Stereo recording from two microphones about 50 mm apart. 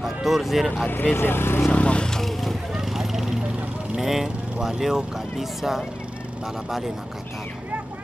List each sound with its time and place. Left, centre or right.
0.0 s speech: centre
0.8 s speech: left
1.7 s vehicle: left
2.0 s vehicle: centre
2.7 s a sound: centre
3.9 s speech: centre